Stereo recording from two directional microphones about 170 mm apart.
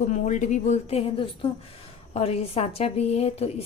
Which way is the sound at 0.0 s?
45° left (ahead or behind).